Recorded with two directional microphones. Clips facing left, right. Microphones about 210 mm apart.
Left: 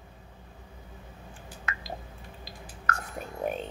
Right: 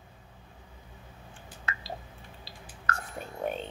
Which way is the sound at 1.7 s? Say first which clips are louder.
Even; 30° right (ahead or behind).